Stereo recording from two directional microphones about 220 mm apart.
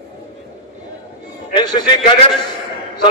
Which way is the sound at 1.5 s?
20° left (ahead or behind).